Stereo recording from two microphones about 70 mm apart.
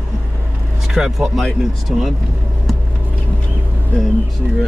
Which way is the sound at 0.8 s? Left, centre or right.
Centre.